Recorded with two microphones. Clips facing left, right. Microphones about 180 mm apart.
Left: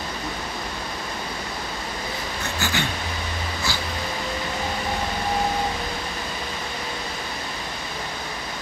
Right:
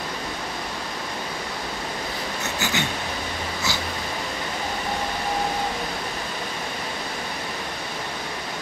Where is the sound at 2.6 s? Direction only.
20° right (ahead or behind).